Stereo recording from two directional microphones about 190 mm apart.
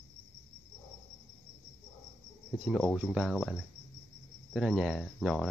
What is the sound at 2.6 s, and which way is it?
Speech, 5° left (ahead or behind).